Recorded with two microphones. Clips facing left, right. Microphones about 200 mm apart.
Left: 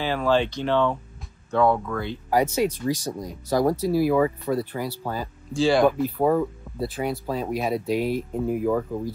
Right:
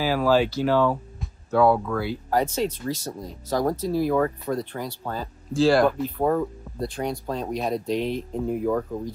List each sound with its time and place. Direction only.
0.0 s speech: 5° right (ahead or behind)
2.3 s speech: 10° left (ahead or behind)